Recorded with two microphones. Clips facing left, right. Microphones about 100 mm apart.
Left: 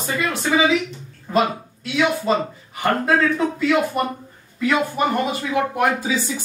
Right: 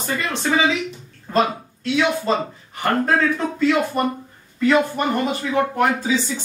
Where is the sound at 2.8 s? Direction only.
5° left (ahead or behind).